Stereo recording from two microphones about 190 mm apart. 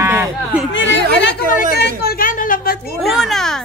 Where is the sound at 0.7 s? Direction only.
75° left (ahead or behind).